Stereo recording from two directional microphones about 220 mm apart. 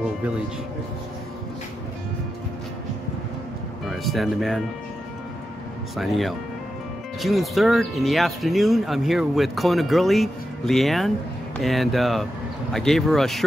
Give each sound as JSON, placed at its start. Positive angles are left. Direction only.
{"t": 3.8, "sound": "speech", "side_deg": 0}
{"t": 5.9, "sound": "speech", "side_deg": 0}